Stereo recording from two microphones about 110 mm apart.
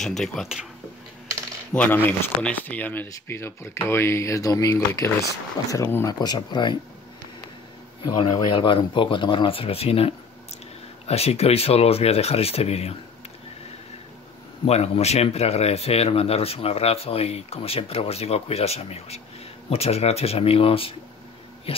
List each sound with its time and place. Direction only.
0.0 s speech: 5° left (ahead or behind)
1.7 s speech: 15° left (ahead or behind); by 6.8 s 40° left (ahead or behind)
8.0 s speech: 45° left (ahead or behind); by 12.9 s 70° left (ahead or behind)
14.6 s speech: 70° left (ahead or behind)